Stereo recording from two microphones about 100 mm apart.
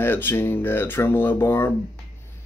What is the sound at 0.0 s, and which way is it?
Speech, 20° left (ahead or behind).